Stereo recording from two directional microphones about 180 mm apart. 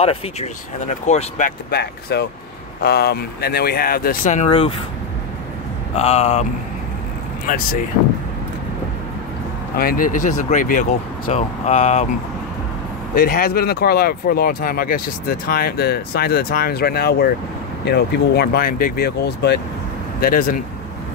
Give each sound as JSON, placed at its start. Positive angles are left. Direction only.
{"t": 0.0, "sound": "speech", "side_deg": 35}
{"t": 1.7, "sound": "speech", "side_deg": 65}
{"t": 4.5, "sound": "speech", "side_deg": 30}
{"t": 5.9, "sound": "speech", "side_deg": 35}
{"t": 7.4, "sound": "speech", "side_deg": 50}
{"t": 9.8, "sound": "speech", "side_deg": 55}
{"t": 13.1, "sound": "speech", "side_deg": 55}
{"t": 20.2, "sound": "speech", "side_deg": 50}